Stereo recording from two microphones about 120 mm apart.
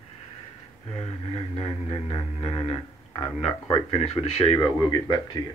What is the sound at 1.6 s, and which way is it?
Speech, 45° left (ahead or behind).